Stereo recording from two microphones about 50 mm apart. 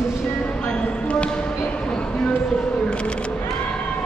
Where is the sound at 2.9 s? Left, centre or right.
Left.